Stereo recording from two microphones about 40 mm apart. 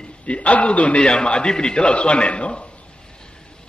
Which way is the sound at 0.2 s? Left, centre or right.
Left.